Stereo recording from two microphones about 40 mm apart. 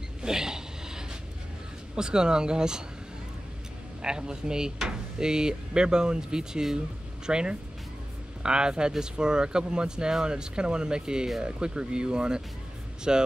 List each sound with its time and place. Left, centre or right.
0.2 s a sound: centre
2.0 s speech: centre
4.0 s speech: right